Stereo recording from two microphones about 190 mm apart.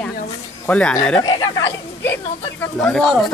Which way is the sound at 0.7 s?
5° left (ahead or behind).